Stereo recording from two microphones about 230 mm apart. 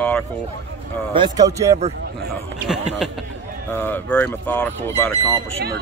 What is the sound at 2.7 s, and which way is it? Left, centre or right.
Speech, centre.